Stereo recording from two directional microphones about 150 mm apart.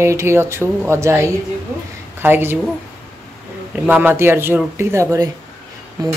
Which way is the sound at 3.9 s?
15° right (ahead or behind).